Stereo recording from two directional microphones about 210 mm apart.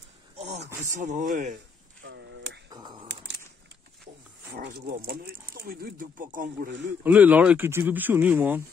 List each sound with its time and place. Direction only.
0.9 s speech: 35° right (ahead or behind)
2.0 s a sound: 55° right (ahead or behind)
2.7 s typing: 20° right (ahead or behind)
4.6 s speech: 45° right (ahead or behind)
7.0 s speech: 5° right (ahead or behind)